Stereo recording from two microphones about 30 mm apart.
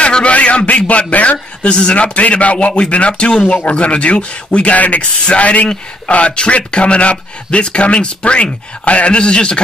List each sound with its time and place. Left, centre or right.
0.0 s a man's voice: left
1.6 s speech: left
2.0 s a man's voice: left
4.7 s a man's voice: left